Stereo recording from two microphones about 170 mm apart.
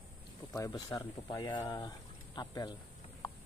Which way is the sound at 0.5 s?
20° left (ahead or behind).